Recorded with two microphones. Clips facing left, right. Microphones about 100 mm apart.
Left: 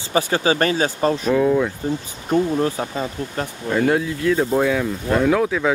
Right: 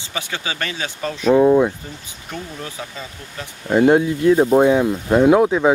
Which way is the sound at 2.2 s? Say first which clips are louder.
Left 13 dB; 40° left (ahead or behind).